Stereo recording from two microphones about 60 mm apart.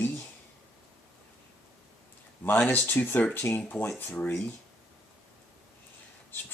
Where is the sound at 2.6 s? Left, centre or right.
Left.